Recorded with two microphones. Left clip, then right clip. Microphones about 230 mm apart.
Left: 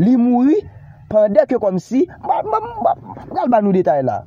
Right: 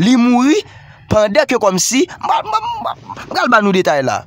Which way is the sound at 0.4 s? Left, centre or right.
Centre.